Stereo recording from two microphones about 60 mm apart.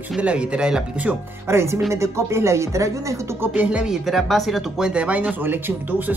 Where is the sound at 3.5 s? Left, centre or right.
Right.